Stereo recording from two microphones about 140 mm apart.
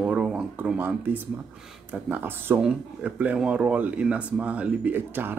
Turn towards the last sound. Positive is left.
turn(degrees=-15)  # may be behind; listen again after turning